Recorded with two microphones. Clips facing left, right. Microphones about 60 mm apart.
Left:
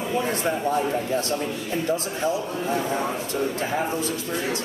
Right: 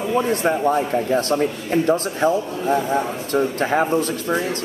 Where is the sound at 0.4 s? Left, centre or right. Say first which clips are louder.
Right 5 dB; right.